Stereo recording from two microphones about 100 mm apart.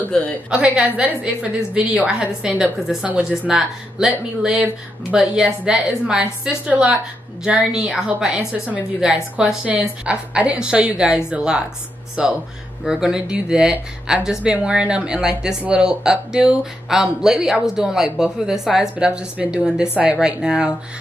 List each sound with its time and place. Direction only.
0.0 s a woman's voice: 15° left (ahead or behind)
0.5 s a woman's voice: 10° right (ahead or behind)